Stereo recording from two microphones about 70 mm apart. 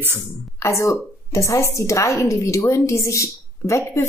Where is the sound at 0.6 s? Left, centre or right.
Left.